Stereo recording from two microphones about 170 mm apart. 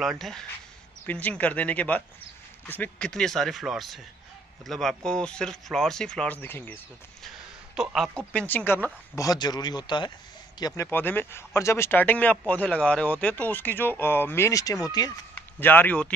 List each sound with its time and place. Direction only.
0.0 s speech: centre (ahead or behind)
7.7 s speech: centre (ahead or behind); by 10.1 s 25° left (ahead or behind)
10.6 s speech: 15° left (ahead or behind)
15.3 s speech: 10° left (ahead or behind)